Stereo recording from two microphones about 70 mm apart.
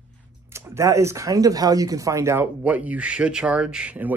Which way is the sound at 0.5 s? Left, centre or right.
Right.